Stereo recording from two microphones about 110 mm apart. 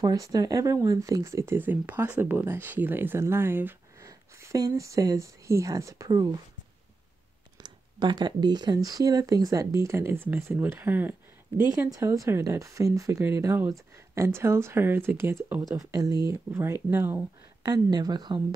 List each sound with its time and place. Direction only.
0.0 s speech: 35° right (ahead or behind)
7.5 s speech: 40° right (ahead or behind); by 11.6 s 15° right (ahead or behind)
11.8 s speech: 30° right (ahead or behind)
15.9 s speech: 35° right (ahead or behind)
16.5 s speech: 20° right (ahead or behind)
17.6 s speech: 40° right (ahead or behind)